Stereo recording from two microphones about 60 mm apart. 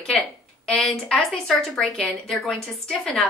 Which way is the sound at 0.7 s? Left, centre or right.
Centre.